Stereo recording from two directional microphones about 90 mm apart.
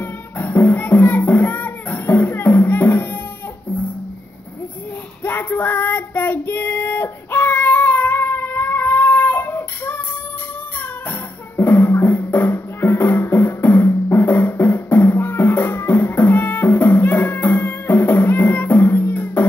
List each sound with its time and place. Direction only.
0.0 s music: 20° left (ahead or behind)
5.2 s child singing: 20° left (ahead or behind)
11.1 s music: 25° left (ahead or behind)